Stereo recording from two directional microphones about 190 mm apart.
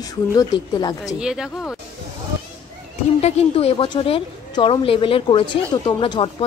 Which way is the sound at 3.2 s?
35° left (ahead or behind).